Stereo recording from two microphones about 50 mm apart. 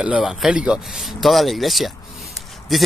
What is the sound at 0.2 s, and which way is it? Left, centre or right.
Speech, centre.